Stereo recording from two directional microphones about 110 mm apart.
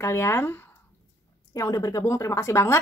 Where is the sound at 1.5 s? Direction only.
30° left (ahead or behind).